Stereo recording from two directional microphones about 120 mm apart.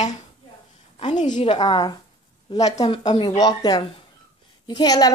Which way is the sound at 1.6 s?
35° left (ahead or behind).